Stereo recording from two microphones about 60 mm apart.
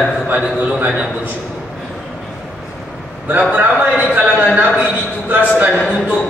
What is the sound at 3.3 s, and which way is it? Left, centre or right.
A man's voice, right.